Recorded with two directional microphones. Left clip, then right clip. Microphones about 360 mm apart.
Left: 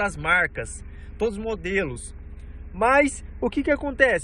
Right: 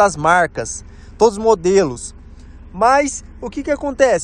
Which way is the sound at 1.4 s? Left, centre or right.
Right.